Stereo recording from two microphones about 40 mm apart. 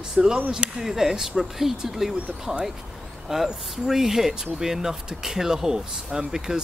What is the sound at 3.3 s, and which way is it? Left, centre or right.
Speech, centre.